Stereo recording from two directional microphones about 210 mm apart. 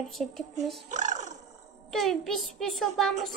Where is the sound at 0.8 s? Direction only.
35° right (ahead or behind).